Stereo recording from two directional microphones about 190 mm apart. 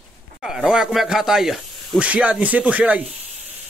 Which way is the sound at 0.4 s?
Centre (ahead or behind).